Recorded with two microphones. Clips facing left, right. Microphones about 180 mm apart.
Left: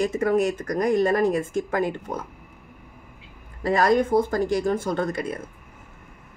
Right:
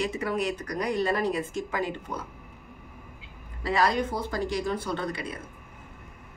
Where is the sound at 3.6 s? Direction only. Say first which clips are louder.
Left 6 dB; 50° left (ahead or behind).